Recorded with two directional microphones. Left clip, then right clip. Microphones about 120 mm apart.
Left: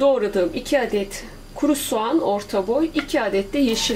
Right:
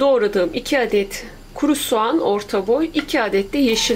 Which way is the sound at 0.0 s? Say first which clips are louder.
Right 2 dB; 40° right (ahead or behind).